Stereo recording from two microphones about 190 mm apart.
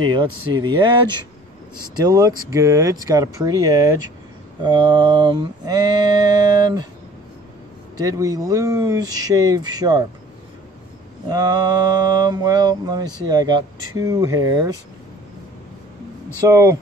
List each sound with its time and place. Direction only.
0.0 s mantra: 25° right (ahead or behind)
2.0 s speech: 20° right (ahead or behind)
4.6 s mantra: 25° right (ahead or behind)
8.0 s mantra: 20° right (ahead or behind)
11.2 s mantra: 20° right (ahead or behind)
16.4 s speech: 15° right (ahead or behind)